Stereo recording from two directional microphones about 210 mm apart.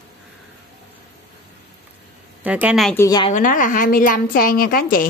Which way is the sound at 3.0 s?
20° left (ahead or behind).